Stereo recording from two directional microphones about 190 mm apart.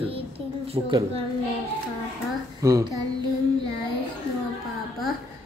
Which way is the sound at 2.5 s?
15° right (ahead or behind).